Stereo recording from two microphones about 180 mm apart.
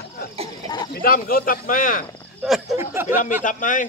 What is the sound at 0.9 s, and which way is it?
Speech, 55° left (ahead or behind).